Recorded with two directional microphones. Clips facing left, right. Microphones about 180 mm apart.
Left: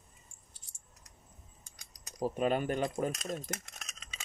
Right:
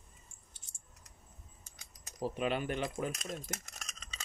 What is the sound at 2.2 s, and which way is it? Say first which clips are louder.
Speech: left 4 dB; 45° left (ahead or behind).